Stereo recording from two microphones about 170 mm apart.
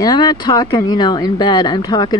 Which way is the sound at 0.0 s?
25° left (ahead or behind).